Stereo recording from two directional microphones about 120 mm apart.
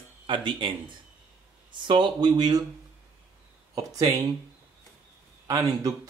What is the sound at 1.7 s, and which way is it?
Speech, 40° right (ahead or behind).